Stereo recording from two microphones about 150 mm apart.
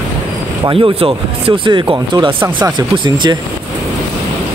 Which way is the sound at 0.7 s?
40° right (ahead or behind).